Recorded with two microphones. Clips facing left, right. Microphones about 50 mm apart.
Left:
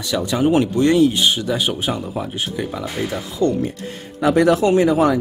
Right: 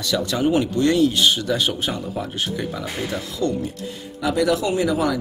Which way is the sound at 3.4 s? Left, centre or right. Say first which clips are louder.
Left 6 dB; left.